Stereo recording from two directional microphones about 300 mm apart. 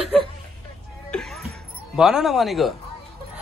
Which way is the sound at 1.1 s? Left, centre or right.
Centre.